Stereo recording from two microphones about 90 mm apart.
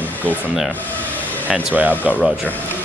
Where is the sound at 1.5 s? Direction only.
20° right (ahead or behind).